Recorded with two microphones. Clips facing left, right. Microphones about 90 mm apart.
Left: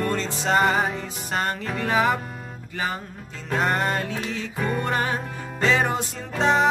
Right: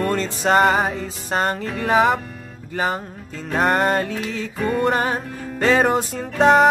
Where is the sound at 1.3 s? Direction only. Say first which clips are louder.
Right 4 dB; 35° right (ahead or behind).